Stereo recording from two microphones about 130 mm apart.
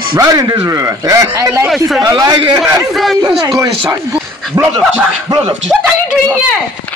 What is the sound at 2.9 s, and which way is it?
Speech, centre (ahead or behind).